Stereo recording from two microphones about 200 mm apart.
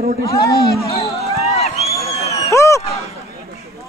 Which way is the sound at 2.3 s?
15° left (ahead or behind).